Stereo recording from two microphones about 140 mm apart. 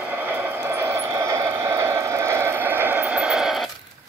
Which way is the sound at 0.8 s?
20° right (ahead or behind).